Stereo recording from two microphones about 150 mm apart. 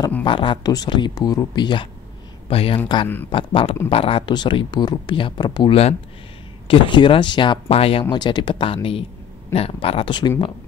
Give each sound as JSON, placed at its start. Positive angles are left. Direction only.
{"t": 0.2, "sound": "speech", "side_deg": 35}